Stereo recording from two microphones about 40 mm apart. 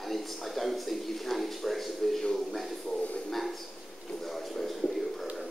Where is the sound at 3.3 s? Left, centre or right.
Centre.